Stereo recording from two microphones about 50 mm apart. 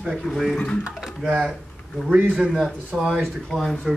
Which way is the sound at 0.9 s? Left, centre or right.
Centre.